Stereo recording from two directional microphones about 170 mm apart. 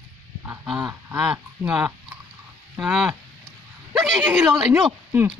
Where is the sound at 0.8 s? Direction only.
20° right (ahead or behind).